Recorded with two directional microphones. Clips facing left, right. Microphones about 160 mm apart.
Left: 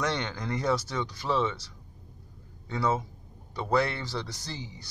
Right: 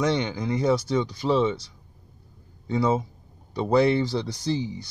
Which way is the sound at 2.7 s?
20° right (ahead or behind).